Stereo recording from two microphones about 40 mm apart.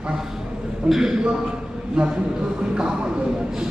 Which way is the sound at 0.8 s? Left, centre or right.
Centre.